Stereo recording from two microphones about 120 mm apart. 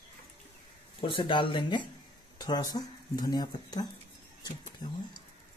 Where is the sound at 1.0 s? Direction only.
45° left (ahead or behind).